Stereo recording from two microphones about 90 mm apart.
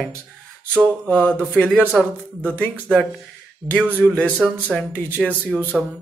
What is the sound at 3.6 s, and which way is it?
Speech, 25° right (ahead or behind).